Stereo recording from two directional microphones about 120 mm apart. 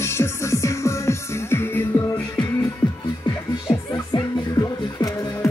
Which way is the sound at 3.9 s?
30° left (ahead or behind).